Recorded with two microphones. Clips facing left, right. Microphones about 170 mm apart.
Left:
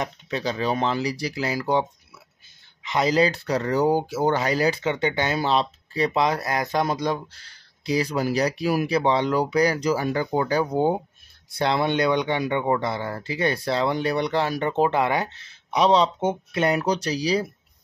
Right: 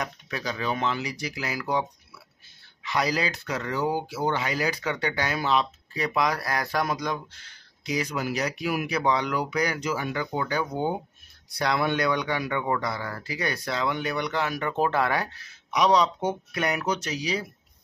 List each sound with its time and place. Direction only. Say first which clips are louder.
0.0 s speech: left 5 dB; 25° left (ahead or behind)